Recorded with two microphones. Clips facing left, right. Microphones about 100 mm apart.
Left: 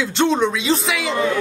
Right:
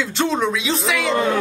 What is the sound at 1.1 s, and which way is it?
Speech, 40° right (ahead or behind).